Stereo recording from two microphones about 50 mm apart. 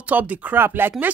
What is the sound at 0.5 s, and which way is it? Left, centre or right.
Speech, right.